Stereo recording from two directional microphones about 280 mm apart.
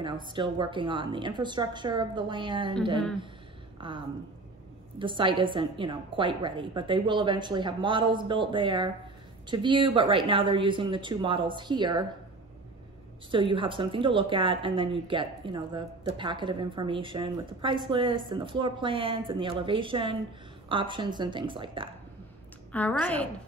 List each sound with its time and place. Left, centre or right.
0.3 s speech: centre
3.8 s speech: centre
13.3 s speech: centre
22.7 s a woman's voice: centre